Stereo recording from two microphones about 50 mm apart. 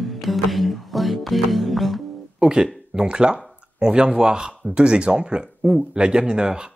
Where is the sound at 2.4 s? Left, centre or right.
Centre.